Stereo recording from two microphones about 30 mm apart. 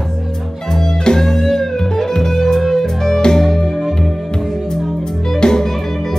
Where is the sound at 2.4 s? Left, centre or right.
Centre.